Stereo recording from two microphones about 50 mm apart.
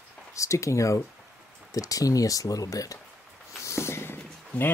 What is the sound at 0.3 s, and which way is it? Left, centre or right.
Speech, left.